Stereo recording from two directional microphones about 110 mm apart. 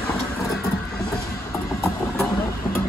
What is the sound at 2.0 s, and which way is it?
Vehicle, 5° left (ahead or behind).